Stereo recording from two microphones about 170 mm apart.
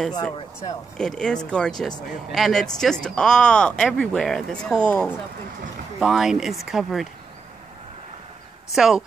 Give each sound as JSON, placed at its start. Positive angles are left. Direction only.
{"t": 0.1, "sound": "speech", "side_deg": 20}
{"t": 0.9, "sound": "speech", "side_deg": 5}
{"t": 5.9, "sound": "speech", "side_deg": 0}
{"t": 8.7, "sound": "speech", "side_deg": -5}